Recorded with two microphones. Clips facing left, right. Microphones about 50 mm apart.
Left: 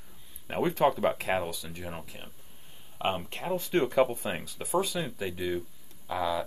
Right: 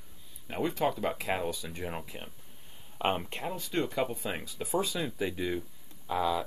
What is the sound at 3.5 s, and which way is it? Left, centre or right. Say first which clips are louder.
Speech: left 6 dB; centre.